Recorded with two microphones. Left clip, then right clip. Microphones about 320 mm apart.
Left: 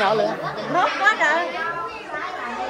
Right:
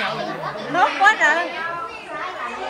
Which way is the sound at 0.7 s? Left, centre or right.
Right.